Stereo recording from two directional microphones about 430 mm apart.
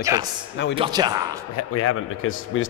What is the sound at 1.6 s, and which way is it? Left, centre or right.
Speech, left.